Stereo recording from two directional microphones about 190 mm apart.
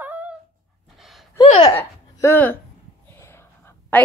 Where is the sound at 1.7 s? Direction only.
10° left (ahead or behind).